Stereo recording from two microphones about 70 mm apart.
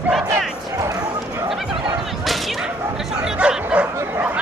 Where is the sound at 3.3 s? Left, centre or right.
Centre.